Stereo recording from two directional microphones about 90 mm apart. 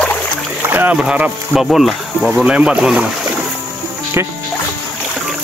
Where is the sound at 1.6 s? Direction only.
Centre (ahead or behind).